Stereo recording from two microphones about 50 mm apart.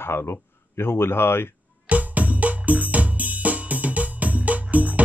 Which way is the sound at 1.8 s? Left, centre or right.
Right.